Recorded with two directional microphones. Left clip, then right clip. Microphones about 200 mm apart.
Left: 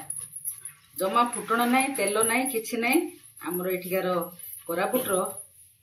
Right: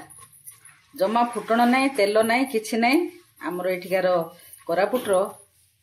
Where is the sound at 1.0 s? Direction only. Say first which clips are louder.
Right 2 dB; 50° right (ahead or behind).